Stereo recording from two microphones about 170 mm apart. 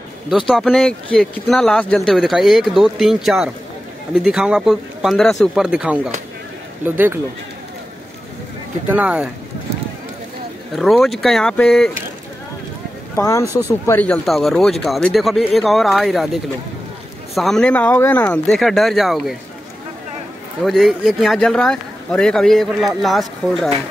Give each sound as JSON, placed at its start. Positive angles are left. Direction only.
{"t": 0.5, "sound": "a man's voice", "side_deg": 0}
{"t": 8.8, "sound": "speech", "side_deg": -10}
{"t": 10.7, "sound": "a man's voice", "side_deg": 0}
{"t": 13.1, "sound": "speech", "side_deg": 15}
{"t": 13.5, "sound": "speech", "side_deg": -15}
{"t": 13.8, "sound": "a man's voice", "side_deg": 10}
{"t": 17.3, "sound": "a man's voice", "side_deg": 0}
{"t": 20.6, "sound": "a man's voice", "side_deg": 0}